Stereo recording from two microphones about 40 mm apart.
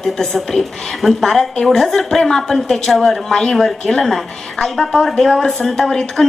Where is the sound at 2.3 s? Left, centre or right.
Centre.